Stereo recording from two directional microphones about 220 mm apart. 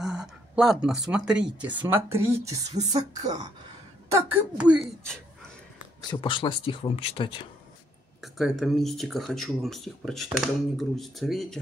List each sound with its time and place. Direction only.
0.0 s speech: 5° right (ahead or behind)
5.9 s speech: 20° left (ahead or behind)
8.2 s speech: centre (ahead or behind)